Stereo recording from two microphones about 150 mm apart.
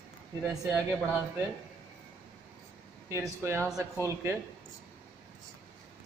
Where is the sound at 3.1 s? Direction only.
20° right (ahead or behind).